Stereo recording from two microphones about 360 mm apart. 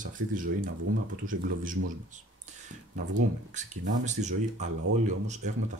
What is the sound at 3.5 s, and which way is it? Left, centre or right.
Speech, centre.